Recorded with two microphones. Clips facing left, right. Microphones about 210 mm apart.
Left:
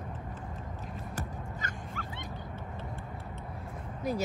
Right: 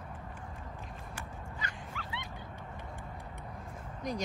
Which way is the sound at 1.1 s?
45° left (ahead or behind).